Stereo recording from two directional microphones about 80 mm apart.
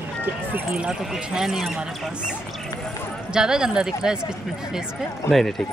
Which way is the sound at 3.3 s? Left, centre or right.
Centre.